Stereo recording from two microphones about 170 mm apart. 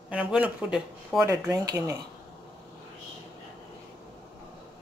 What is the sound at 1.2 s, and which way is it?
Speech, 15° right (ahead or behind).